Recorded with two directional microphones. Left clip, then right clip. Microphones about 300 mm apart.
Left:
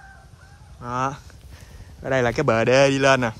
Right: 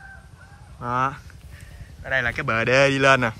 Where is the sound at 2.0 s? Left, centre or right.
Left.